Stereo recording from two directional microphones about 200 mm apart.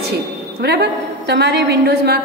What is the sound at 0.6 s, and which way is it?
A woman's voice, 55° right (ahead or behind).